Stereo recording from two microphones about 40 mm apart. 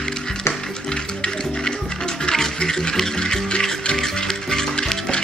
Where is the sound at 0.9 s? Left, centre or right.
Left.